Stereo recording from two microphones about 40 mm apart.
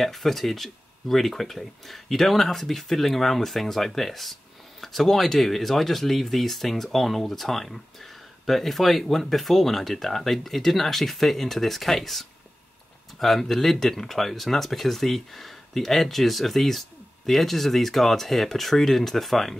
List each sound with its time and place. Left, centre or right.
0.0 s speech: centre